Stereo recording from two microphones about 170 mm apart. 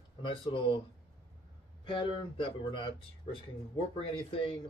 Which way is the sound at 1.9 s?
30° left (ahead or behind).